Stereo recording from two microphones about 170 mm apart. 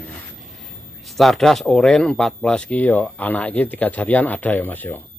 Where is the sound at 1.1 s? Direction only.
Centre (ahead or behind).